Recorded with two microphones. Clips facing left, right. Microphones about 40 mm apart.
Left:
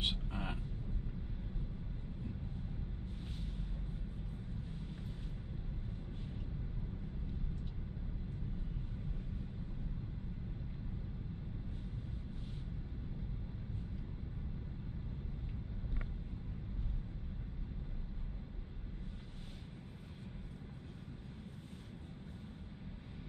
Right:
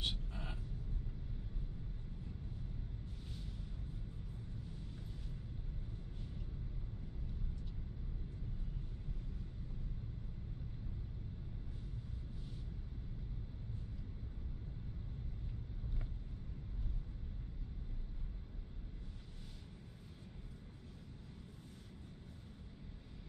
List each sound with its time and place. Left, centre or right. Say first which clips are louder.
0.0 s vehicle: left 4 dB; left